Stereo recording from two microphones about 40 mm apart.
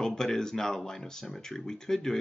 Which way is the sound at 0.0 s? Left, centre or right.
Centre.